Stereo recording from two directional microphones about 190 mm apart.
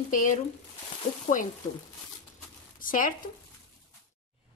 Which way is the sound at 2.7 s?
45° left (ahead or behind).